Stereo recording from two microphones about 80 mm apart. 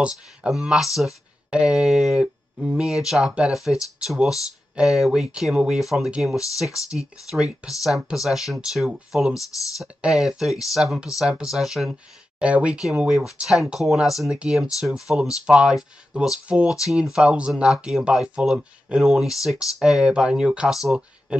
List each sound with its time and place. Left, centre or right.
0.0 s speech: centre
12.4 s speech: centre